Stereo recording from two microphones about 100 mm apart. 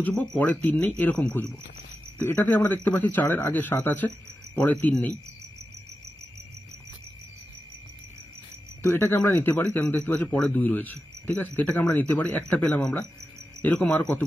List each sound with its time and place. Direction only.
0.0 s a man's voice: 15° left (ahead or behind)
8.8 s a man's voice: 25° left (ahead or behind)